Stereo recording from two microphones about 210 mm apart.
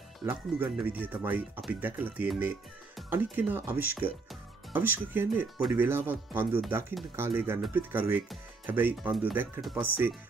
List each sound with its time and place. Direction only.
0.2 s speech: 10° right (ahead or behind)